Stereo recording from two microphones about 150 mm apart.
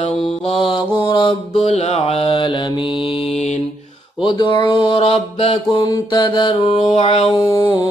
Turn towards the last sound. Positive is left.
turn(degrees=30)  # may be behind; listen again after turning